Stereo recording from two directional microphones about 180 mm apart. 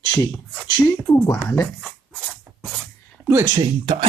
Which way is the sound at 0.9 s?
15° left (ahead or behind).